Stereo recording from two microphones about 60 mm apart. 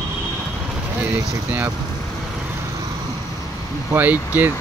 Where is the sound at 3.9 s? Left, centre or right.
Right.